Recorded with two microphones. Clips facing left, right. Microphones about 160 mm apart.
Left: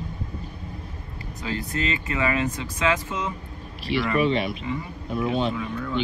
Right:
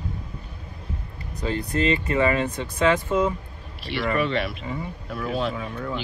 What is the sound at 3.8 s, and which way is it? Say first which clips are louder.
Speech: left 2 dB; centre (ahead or behind).